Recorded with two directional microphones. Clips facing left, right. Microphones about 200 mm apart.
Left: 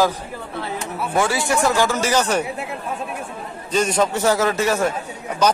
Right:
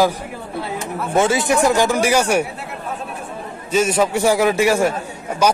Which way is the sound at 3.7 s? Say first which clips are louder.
Right 2 dB; 5° right (ahead or behind).